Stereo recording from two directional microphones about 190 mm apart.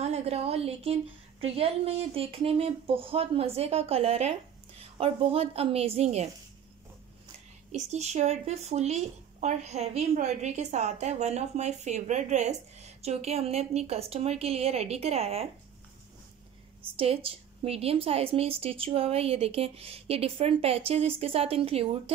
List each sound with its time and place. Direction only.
0.0 s a sound: 35° right (ahead or behind)
1.4 s a woman's voice: 30° right (ahead or behind)
7.7 s a woman's voice: 35° right (ahead or behind)
16.9 s a woman's voice: 30° right (ahead or behind)